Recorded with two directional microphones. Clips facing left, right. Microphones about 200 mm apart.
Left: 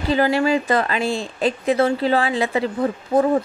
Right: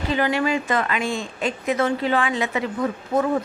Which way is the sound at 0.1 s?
35° left (ahead or behind).